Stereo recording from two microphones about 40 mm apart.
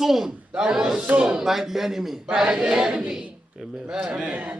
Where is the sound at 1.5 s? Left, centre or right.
Centre.